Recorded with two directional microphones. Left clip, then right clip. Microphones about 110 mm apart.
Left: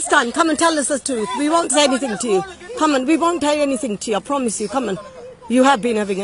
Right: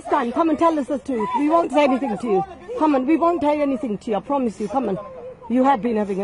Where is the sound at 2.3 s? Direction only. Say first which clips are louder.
Left 1 dB; 5° left (ahead or behind).